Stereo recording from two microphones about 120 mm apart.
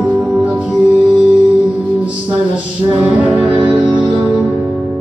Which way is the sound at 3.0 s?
10° right (ahead or behind).